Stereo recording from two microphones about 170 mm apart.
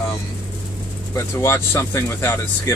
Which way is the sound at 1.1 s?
15° left (ahead or behind).